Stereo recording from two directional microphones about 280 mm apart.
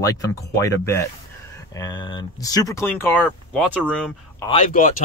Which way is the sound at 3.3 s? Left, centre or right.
Centre.